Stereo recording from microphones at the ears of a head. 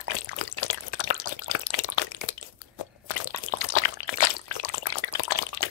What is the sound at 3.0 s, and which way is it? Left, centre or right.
Pour, left.